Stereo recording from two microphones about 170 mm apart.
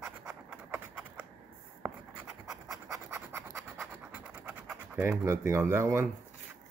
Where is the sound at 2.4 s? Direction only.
20° right (ahead or behind).